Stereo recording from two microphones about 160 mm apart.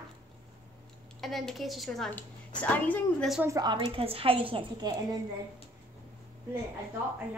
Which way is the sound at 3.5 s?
25° right (ahead or behind).